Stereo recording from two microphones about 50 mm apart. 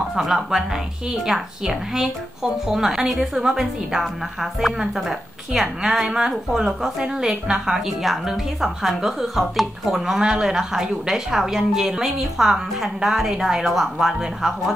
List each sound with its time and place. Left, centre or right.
0.1 s a woman's voice: centre